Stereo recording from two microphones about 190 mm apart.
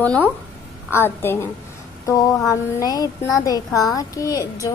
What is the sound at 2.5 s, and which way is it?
A woman's voice, 20° left (ahead or behind).